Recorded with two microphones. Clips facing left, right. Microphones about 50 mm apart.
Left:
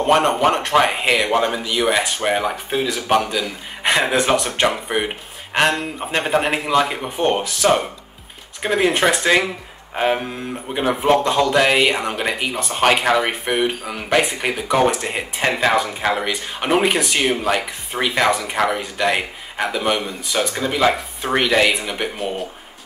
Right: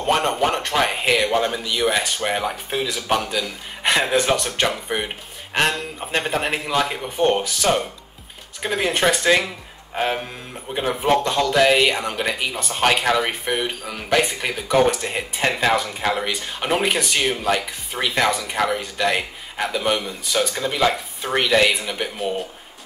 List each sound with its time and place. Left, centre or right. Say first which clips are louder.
0.0 s speech: left 4 dB; left
20.7 s speech: left 4 dB; centre